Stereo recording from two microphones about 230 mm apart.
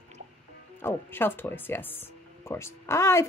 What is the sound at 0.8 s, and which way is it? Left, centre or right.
Speech, centre.